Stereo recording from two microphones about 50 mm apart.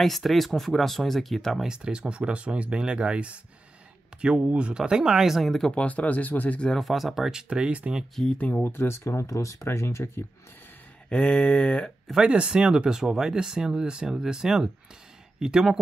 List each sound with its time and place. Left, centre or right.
0.0 s speech: centre
1.6 s speech: centre
5.7 s speech: left
6.8 s speech: centre; by 7.9 s right
8.3 s a sound: left
8.6 s speech: left
9.7 s speech: left
11.1 s a sound: left
12.2 s speech: right